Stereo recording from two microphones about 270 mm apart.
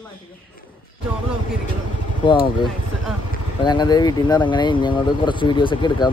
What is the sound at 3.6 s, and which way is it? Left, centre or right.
Speech, centre.